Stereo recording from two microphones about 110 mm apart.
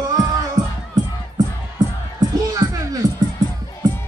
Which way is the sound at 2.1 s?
30° right (ahead or behind).